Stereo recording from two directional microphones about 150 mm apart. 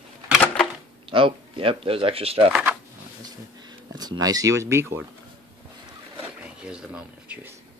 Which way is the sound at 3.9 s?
25° right (ahead or behind).